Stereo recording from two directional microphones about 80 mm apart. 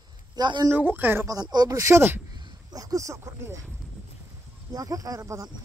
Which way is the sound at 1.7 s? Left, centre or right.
Right.